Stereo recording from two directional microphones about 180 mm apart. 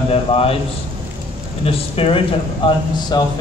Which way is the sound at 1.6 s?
30° left (ahead or behind).